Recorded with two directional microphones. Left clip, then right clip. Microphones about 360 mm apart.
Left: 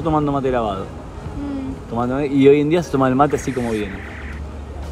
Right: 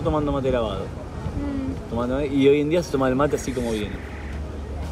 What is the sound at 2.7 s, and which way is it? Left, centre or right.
Speech, left.